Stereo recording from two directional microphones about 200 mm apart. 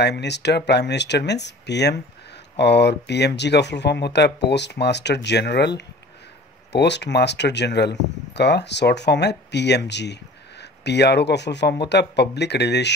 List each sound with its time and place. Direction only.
0.0 s speech: 60° left (ahead or behind)